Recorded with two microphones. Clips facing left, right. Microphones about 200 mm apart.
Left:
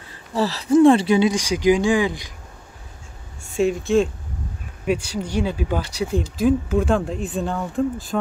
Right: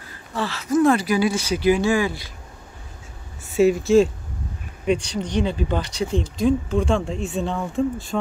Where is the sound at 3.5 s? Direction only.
Centre (ahead or behind).